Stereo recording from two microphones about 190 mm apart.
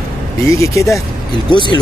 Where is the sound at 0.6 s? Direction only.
15° left (ahead or behind).